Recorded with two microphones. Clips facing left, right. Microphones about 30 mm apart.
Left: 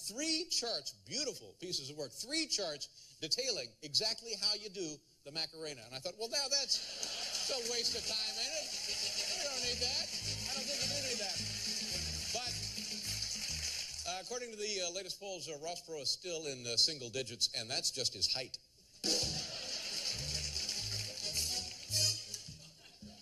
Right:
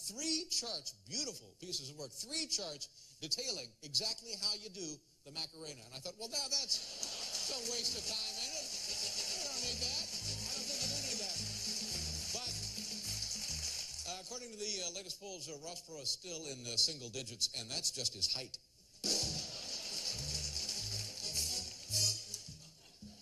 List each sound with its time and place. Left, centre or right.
0.2 s speech: left
6.6 s a sound: left
14.6 s speech: left
19.0 s music: left